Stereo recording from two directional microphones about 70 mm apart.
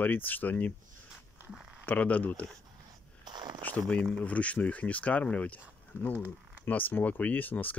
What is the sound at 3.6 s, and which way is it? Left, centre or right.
Speech, left.